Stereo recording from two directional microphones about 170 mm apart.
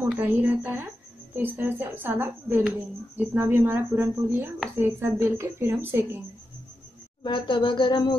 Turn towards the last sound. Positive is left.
turn(degrees=30)  # may be behind; listen again after turning